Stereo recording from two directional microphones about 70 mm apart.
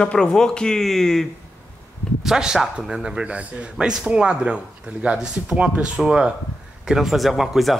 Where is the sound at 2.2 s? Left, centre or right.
Centre.